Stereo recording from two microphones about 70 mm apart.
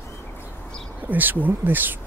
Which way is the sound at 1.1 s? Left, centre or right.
Right.